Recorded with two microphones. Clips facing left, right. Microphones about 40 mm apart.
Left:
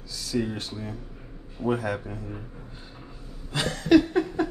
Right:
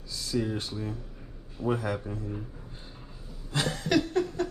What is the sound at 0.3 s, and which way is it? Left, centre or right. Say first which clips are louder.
Speech: left 2 dB; left.